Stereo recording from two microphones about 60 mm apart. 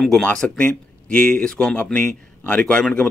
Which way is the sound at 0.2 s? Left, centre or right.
Centre.